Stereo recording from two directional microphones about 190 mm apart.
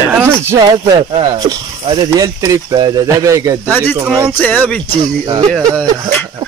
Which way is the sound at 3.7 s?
10° left (ahead or behind).